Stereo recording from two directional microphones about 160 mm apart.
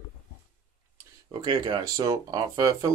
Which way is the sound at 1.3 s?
30° right (ahead or behind).